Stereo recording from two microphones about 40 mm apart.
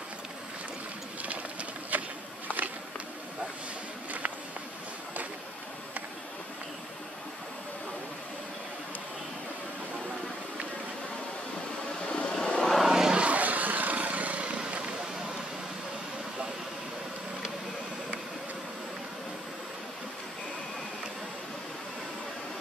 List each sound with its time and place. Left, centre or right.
1.2 s a sound: right
12.1 s vehicle: left
12.8 s vehicle: centre
13.1 s vehicle: right